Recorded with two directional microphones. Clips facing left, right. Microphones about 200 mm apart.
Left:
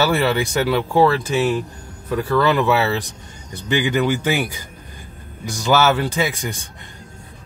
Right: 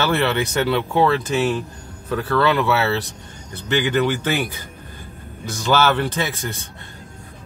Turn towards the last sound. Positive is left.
turn(degrees=15)  # may be behind; listen again after turning